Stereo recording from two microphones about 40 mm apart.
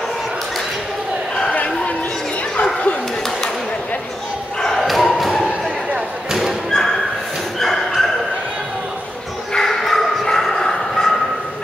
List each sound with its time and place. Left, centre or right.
2.5 s dog: left
4.7 s thump: centre
7.5 s dog: centre
9.5 s bow-wow: centre